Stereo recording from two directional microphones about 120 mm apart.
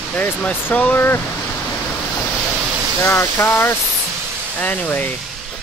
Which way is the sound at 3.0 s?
20° left (ahead or behind).